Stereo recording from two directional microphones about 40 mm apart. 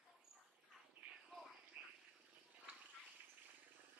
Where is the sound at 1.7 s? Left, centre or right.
Right.